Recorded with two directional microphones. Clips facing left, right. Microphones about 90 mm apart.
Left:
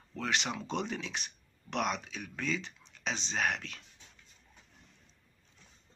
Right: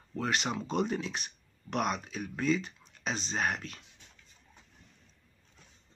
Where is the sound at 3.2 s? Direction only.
5° right (ahead or behind).